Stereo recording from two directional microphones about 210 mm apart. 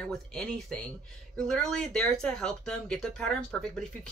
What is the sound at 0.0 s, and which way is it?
Speech, 5° left (ahead or behind).